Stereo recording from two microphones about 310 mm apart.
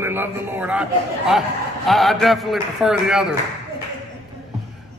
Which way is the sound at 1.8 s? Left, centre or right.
Centre.